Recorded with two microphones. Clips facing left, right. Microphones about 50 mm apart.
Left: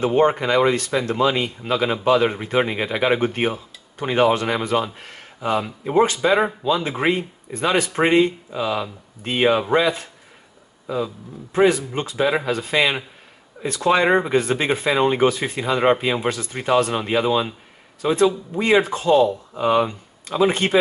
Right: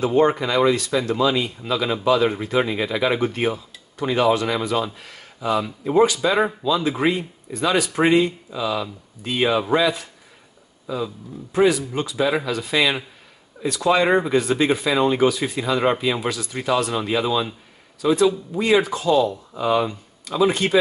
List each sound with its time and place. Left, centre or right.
0.0 s speech: left
11.5 s speech: left
14.0 s speech: centre
14.3 s speech: left